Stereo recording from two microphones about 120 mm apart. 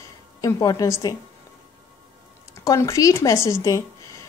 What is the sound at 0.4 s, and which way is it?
Speech, 30° left (ahead or behind).